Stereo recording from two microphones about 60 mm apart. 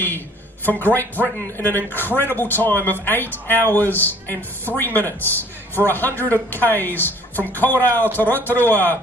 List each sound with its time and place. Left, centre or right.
0.7 s speech: left